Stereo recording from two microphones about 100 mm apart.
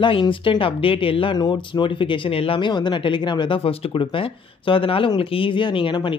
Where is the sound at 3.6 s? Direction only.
75° left (ahead or behind).